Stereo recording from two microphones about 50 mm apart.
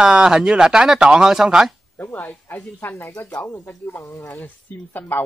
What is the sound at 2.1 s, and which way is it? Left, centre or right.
Speech, left.